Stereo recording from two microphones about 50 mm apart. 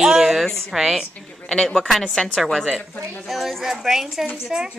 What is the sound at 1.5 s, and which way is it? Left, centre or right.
A woman's voice, centre.